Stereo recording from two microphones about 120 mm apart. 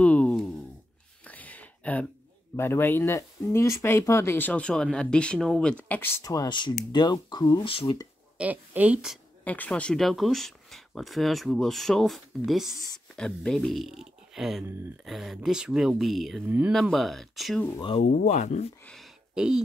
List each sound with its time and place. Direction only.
0.0 s a sound: 10° left (ahead or behind)
2.5 s speech: 20° left (ahead or behind)
6.2 s speech: 30° left (ahead or behind)
7.7 s speech: 50° left (ahead or behind)
8.4 s a woman's voice: 10° right (ahead or behind)
9.4 s speech: 15° left (ahead or behind)
16.4 s a woman's voice: 15° right (ahead or behind)
16.7 s speech: centre (ahead or behind)
18.2 s speech: 75° left (ahead or behind)
19.3 s speech: 5° right (ahead or behind)